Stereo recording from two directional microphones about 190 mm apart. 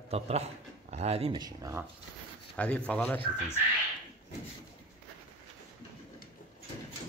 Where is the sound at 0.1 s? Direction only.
35° right (ahead or behind); by 1.9 s 15° right (ahead or behind).